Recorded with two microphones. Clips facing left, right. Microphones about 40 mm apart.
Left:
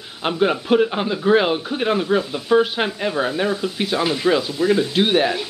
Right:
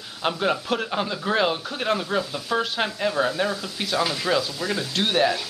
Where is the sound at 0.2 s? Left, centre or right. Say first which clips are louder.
Left 4 dB; centre.